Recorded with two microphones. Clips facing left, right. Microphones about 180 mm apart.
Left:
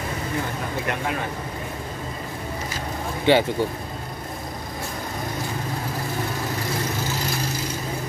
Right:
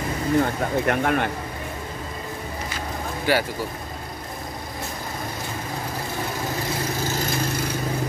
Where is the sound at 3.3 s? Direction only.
25° left (ahead or behind).